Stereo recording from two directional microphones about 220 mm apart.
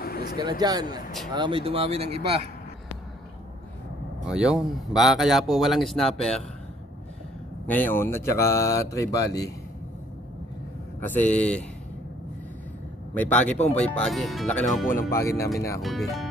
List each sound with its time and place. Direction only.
0.0 s a sound: 45° left (ahead or behind)
0.4 s speech: 20° right (ahead or behind)
4.3 s speech: 5° right (ahead or behind)
7.6 s speech: 10° left (ahead or behind)
11.0 s speech: 10° left (ahead or behind)
13.1 s speech: 5° left (ahead or behind)
15.0 s speech: 15° left (ahead or behind)
15.8 s speech: centre (ahead or behind)